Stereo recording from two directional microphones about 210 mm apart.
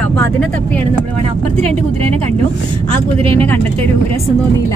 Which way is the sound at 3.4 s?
10° left (ahead or behind).